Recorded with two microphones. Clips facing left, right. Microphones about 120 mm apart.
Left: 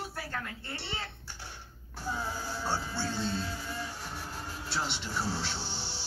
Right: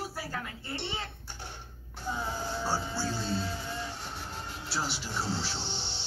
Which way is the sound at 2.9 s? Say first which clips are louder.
Even; centre (ahead or behind).